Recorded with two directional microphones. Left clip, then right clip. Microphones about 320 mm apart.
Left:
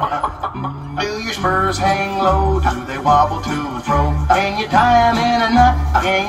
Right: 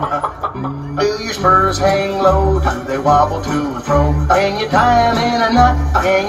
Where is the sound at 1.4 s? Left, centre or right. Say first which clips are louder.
Right 5 dB; left.